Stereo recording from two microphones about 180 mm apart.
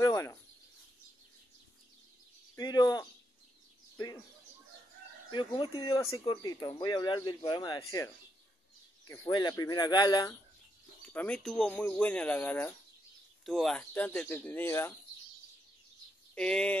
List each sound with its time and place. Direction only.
0.0 s speech: 20° left (ahead or behind)
2.5 s speech: 20° left (ahead or behind)
3.9 s bird: 20° left (ahead or behind)
5.3 s speech: 25° left (ahead or behind)
11.1 s speech: 5° left (ahead or behind)
16.3 s speech: 5° left (ahead or behind)